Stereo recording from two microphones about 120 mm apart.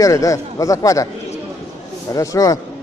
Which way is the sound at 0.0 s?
30° left (ahead or behind).